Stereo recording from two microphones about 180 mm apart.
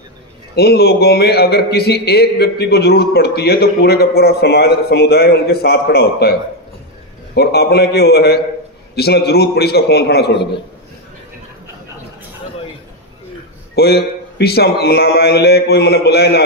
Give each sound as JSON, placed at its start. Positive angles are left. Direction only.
{"t": 0.6, "sound": "a man's voice", "side_deg": 60}
{"t": 7.3, "sound": "a man's voice", "side_deg": 60}
{"t": 13.7, "sound": "a man's voice", "side_deg": 60}